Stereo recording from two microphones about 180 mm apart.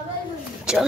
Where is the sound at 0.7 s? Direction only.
5° right (ahead or behind).